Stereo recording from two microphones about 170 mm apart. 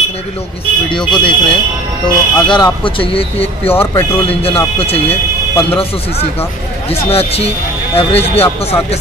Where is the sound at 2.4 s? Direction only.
25° left (ahead or behind).